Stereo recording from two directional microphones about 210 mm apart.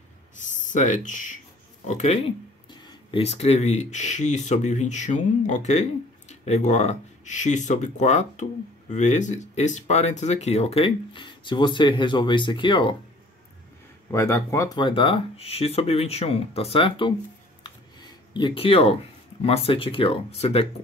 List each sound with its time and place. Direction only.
0.6 s speech: 35° left (ahead or behind)
14.1 s speech: 15° left (ahead or behind)
17.6 s a sound: 20° left (ahead or behind)
19.4 s speech: 25° left (ahead or behind)